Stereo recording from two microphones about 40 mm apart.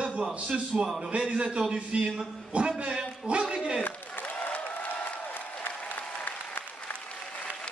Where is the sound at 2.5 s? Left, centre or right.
Right.